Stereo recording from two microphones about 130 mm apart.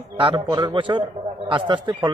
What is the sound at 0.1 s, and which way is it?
A man's voice, 35° right (ahead or behind).